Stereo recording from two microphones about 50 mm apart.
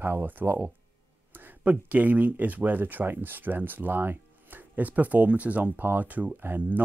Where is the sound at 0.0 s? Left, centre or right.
Right.